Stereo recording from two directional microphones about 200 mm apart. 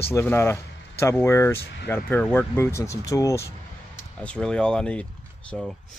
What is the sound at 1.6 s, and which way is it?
Speech, 55° left (ahead or behind).